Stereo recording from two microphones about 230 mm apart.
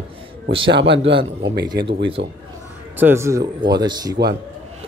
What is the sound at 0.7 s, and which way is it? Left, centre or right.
A man's voice, right.